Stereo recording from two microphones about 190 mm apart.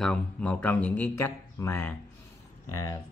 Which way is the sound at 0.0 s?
5° left (ahead or behind).